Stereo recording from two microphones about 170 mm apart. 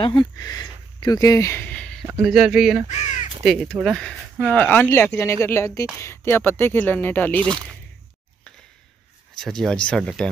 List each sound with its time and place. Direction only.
0.0 s speech: 25° left (ahead or behind); by 2.0 s 10° left (ahead or behind)
2.2 s speech: 5° right (ahead or behind)
9.4 s speech: 5° left (ahead or behind)